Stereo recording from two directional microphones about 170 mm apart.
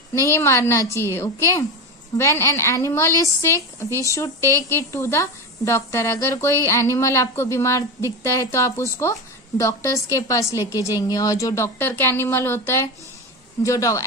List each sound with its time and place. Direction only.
0.1 s a woman's voice: 15° left (ahead or behind)